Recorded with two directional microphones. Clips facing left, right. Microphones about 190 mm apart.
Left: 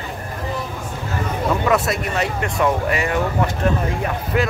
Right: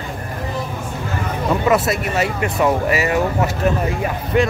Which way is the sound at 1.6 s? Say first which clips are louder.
Right 2 dB; centre (ahead or behind).